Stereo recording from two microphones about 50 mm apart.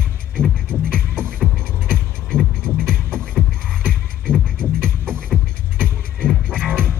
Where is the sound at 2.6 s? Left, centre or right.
Centre.